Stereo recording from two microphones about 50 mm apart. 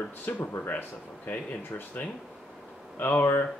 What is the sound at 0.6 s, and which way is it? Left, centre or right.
Speech, left.